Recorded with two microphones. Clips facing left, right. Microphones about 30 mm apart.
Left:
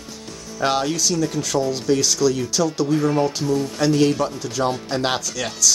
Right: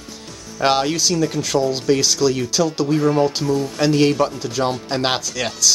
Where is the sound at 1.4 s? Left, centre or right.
Right.